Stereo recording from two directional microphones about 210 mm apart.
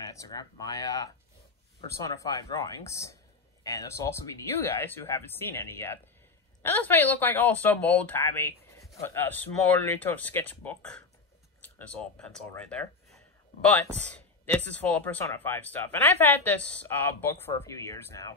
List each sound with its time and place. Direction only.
0.1 s speech: 15° left (ahead or behind)